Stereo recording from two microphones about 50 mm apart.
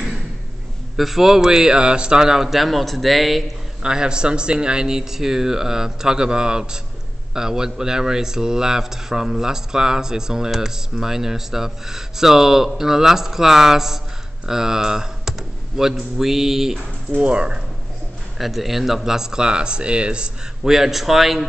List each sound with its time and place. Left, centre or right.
0.9 s speech: centre
3.8 s speech: centre
17.2 s speech: right
18.4 s speech: centre; by 20.2 s right
20.6 s speech: centre